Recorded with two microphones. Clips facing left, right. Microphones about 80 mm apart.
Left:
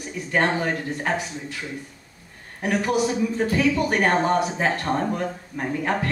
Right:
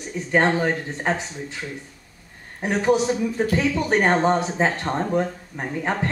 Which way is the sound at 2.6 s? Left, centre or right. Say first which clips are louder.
Right 2 dB; right.